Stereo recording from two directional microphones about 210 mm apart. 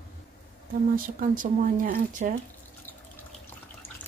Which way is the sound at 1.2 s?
40° right (ahead or behind).